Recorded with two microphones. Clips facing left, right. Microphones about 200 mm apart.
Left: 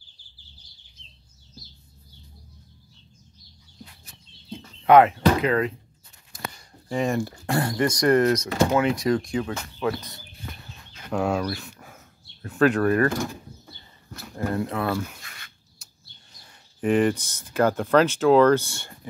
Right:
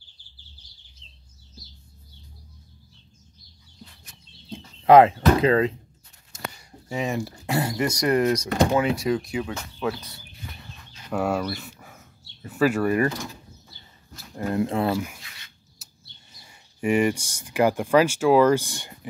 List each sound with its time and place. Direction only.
4.5 s a sound: 30° right (ahead or behind)
6.9 s speech: 5° right (ahead or behind)
11.1 s speech: 5° right (ahead or behind)
14.3 s speech: 20° right (ahead or behind)
15.2 s bird: 55° left (ahead or behind)
15.8 s speech: 5° right (ahead or behind)